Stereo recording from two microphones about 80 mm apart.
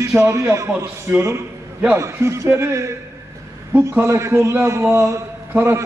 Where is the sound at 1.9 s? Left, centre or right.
Right.